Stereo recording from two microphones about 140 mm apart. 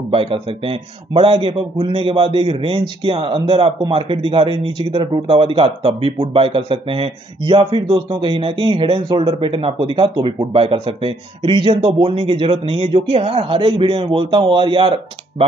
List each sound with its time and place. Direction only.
0.1 s a man's voice: 40° right (ahead or behind)